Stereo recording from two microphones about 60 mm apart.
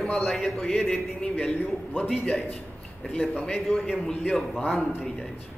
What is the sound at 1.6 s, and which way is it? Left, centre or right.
Speech, left.